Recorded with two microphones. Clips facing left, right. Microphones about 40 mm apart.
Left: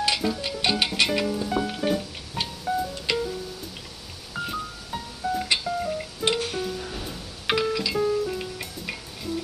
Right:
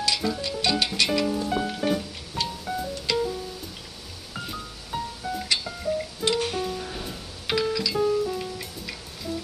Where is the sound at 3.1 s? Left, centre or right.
Left.